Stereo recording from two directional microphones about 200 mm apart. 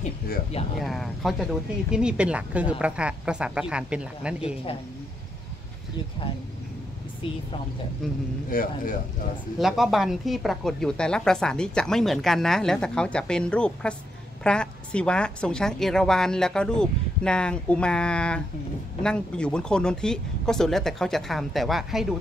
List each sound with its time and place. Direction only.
0.7 s a woman's voice: centre (ahead or behind)
8.5 s a man's voice: 45° left (ahead or behind)
9.6 s a woman's voice: centre (ahead or behind)